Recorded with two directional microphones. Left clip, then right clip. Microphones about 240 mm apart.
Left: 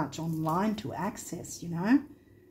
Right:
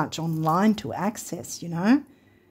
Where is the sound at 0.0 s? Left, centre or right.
Right.